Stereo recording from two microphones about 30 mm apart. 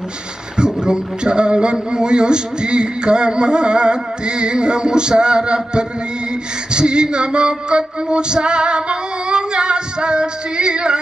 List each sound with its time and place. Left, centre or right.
0.6 s a man's voice: right
6.7 s music: right